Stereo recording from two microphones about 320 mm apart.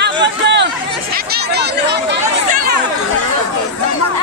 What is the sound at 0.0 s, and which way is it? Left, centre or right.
Chatter, right.